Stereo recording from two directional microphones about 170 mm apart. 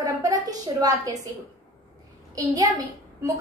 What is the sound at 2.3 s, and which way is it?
Speech, 20° right (ahead or behind).